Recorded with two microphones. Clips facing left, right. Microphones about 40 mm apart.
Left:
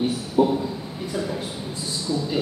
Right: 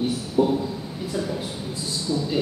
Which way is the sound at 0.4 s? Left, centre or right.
Left.